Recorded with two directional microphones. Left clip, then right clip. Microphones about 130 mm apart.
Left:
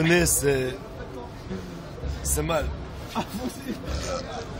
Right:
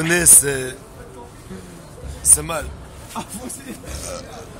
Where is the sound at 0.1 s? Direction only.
15° right (ahead or behind).